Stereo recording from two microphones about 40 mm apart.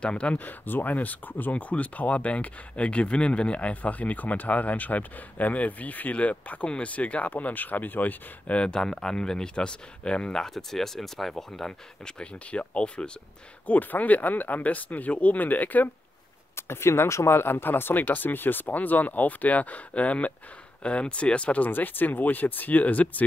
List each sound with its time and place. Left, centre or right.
0.0 s speech: left
0.4 s speech: left
8.5 s speech: left
10.3 s speech: centre
12.4 s speech: left
13.7 s speech: left
16.5 s speech: left
18.0 s speech: left
21.6 s speech: left